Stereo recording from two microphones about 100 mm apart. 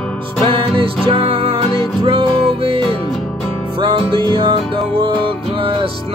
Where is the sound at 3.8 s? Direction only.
55° right (ahead or behind).